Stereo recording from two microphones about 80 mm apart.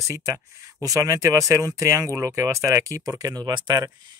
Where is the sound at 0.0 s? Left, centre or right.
Right.